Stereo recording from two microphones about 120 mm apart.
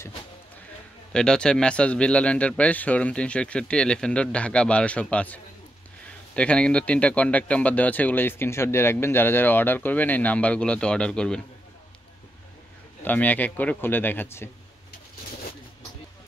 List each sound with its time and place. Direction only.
1.1 s speech: 5° left (ahead or behind)
13.0 s speech: 15° left (ahead or behind)